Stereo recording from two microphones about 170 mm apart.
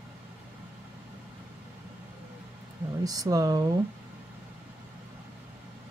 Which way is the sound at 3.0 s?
20° right (ahead or behind).